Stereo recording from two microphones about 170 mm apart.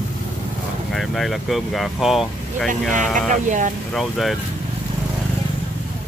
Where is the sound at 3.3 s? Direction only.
50° right (ahead or behind).